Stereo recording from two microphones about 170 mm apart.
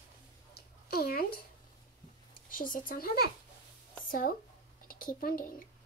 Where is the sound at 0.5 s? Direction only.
65° left (ahead or behind).